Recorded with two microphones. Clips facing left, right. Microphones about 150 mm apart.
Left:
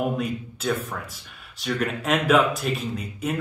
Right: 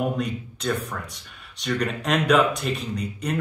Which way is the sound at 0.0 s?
5° left (ahead or behind).